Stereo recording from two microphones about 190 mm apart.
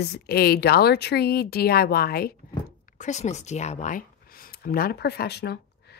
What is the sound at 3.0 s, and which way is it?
A woman's voice, 40° left (ahead or behind).